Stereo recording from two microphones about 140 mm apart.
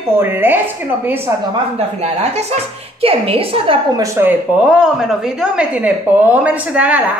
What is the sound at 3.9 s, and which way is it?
A woman's voice, 20° right (ahead or behind).